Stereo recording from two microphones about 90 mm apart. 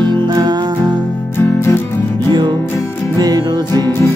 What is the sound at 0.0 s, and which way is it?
Music, 50° right (ahead or behind).